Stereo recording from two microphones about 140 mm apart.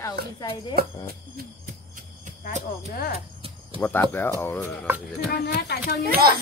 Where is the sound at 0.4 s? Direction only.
35° left (ahead or behind).